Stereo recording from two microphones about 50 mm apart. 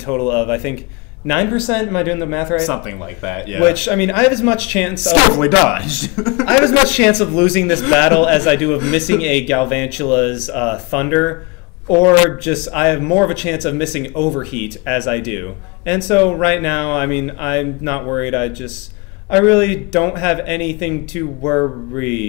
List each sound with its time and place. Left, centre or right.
0.0 s speech: centre